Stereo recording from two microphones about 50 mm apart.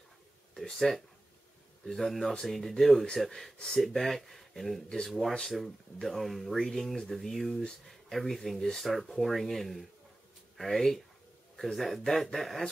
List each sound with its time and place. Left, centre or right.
0.6 s speech: centre
4.8 s speech: centre
5.4 s speech: centre